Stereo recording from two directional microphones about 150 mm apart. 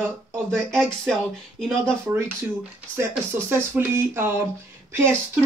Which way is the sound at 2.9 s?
15° right (ahead or behind).